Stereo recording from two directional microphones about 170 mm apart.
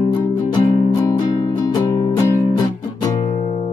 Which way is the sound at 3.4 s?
35° left (ahead or behind).